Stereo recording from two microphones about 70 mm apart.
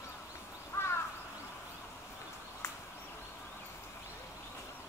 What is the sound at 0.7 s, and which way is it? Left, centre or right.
Crow, left.